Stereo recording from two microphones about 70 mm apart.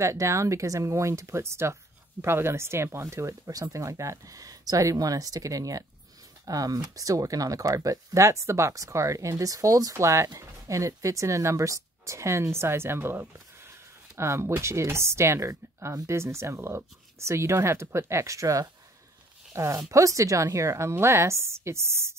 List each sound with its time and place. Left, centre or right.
0.0 s a woman's voice: right